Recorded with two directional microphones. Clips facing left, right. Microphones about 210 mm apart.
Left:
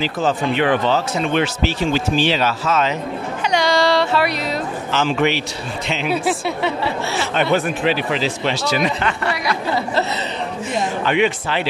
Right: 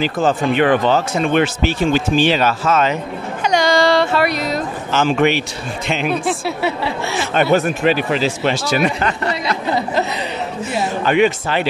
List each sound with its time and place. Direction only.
0.0 s speech: 50° right (ahead or behind)
6.1 s speech: 5° left (ahead or behind)
6.6 s speech: 10° right (ahead or behind)
7.5 s speech: 45° right (ahead or behind)
9.3 s a sound: 20° right (ahead or behind)
11.1 s speech: 45° right (ahead or behind)